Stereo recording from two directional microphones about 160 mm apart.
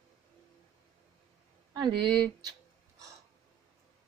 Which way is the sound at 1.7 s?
30° right (ahead or behind).